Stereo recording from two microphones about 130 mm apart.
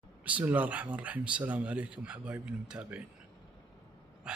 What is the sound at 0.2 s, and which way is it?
Speech, 10° right (ahead or behind).